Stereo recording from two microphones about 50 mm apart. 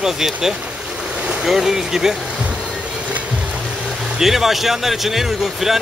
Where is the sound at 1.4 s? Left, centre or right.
Centre.